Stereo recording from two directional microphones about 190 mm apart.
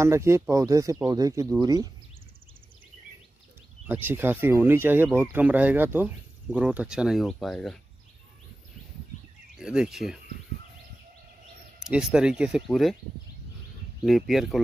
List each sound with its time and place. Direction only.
0.0 s speech: 15° right (ahead or behind)
3.8 s speech: 10° right (ahead or behind)
9.6 s speech: 5° right (ahead or behind)
11.8 s speech: 5° right (ahead or behind)
14.0 s speech: centre (ahead or behind)